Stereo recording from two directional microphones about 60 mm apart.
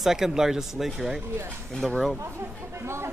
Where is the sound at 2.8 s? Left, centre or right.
Right.